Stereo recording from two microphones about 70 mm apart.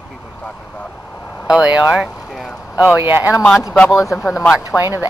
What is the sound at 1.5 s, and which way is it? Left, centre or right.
Speech, centre.